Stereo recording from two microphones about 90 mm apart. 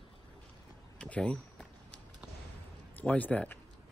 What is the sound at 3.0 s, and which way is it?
Speech, 15° left (ahead or behind).